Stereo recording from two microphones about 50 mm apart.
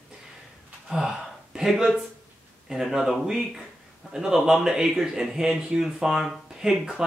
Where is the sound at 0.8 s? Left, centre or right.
Centre.